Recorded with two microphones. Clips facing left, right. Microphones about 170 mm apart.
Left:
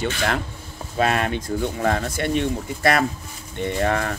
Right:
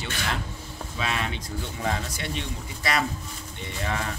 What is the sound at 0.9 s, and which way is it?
Speech, 55° left (ahead or behind).